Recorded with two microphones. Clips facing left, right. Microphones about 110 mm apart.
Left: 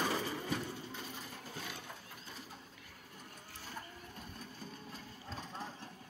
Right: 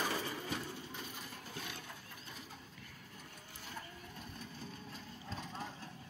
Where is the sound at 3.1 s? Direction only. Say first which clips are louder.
Left 3 dB; 10° left (ahead or behind).